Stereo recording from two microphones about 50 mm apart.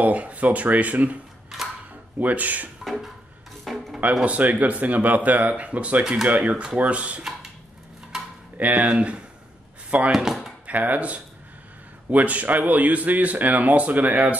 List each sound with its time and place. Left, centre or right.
0.0 s speech: right
1.5 s a sound: centre
2.1 s speech: right
2.8 s a sound: centre
3.6 s music: centre
4.2 s speech: right
6.5 s speech: centre
8.1 s cutlery: centre
8.5 s speech: right
10.1 s speech: centre
10.7 s speech: right